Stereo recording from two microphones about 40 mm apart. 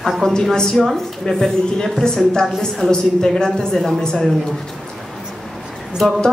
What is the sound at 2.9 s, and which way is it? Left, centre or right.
A woman's voice, centre.